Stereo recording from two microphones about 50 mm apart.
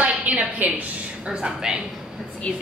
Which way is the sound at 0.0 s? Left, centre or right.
Right.